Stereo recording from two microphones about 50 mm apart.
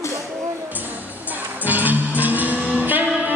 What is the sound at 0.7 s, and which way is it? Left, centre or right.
Music, right.